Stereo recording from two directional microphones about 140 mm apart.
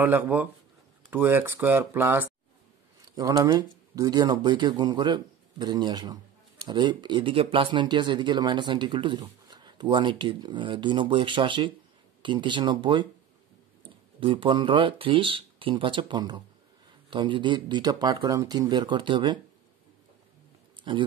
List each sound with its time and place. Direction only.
0.0 s speech: 10° right (ahead or behind)
3.2 s speech: 25° right (ahead or behind)
20.9 s speech: 35° right (ahead or behind)